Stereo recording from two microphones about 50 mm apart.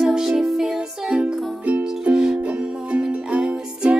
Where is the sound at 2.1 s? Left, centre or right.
Centre.